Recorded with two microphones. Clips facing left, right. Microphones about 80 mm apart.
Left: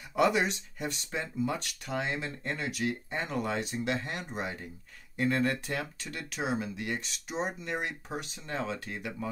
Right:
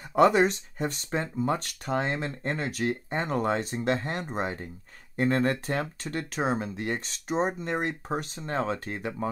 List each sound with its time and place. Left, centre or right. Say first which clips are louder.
0.1 s speech: right 6 dB; right